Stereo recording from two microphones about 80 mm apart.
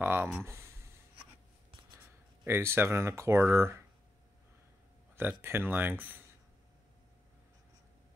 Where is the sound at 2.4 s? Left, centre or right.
Right.